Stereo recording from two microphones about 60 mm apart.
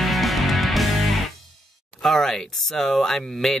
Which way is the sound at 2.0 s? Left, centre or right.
Centre.